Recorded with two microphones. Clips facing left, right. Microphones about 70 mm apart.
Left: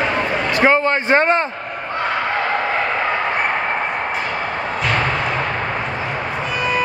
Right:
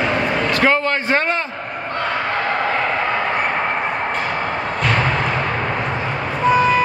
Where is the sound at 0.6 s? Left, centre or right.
Left.